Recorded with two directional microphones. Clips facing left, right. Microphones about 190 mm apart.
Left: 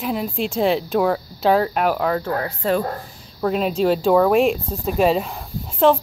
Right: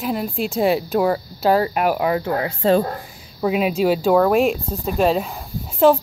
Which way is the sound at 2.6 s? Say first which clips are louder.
Right 5 dB; 30° right (ahead or behind).